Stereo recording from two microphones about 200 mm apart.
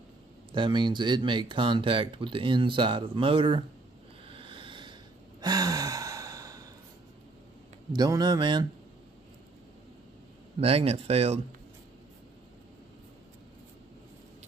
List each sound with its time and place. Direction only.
0.5 s speech: 25° right (ahead or behind)
4.3 s a sound: 25° right (ahead or behind)
5.4 s sigh: 20° right (ahead or behind)
7.9 s speech: 20° right (ahead or behind)
10.6 s speech: 30° right (ahead or behind)